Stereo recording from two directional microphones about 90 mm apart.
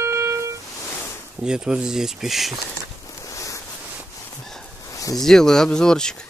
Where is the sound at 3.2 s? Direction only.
35° left (ahead or behind).